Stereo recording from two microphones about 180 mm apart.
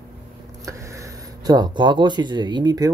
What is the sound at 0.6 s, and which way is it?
Speech, 15° right (ahead or behind).